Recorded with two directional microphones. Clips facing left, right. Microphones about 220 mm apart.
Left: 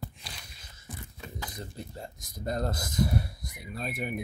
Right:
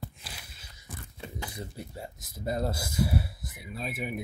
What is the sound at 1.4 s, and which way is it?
Speech, 10° right (ahead or behind).